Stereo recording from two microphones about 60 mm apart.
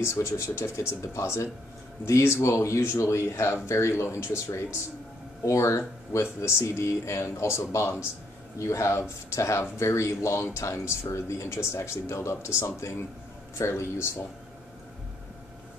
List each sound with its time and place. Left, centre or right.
0.0 s speech: left
5.4 s speech: left